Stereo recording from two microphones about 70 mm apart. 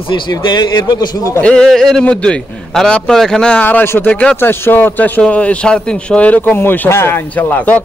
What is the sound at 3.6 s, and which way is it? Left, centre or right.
A man's voice, left.